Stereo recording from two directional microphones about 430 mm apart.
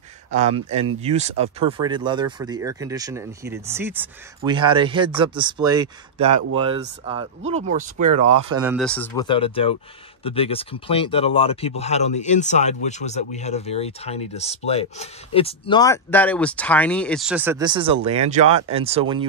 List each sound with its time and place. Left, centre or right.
0.3 s speech: centre
8.2 s speech: centre